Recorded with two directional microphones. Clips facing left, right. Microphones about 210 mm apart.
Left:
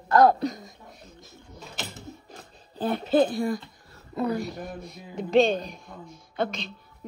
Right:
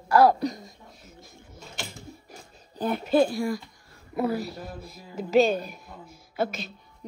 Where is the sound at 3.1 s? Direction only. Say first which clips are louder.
Even; 20° left (ahead or behind).